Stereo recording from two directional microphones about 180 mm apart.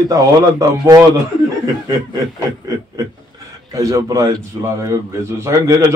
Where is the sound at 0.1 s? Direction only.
20° right (ahead or behind).